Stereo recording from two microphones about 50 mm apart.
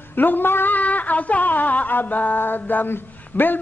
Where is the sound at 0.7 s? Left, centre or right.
Left.